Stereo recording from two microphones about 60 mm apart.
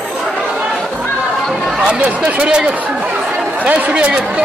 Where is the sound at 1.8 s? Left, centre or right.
Centre.